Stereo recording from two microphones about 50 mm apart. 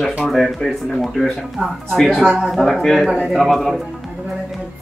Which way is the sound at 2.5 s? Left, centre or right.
Centre.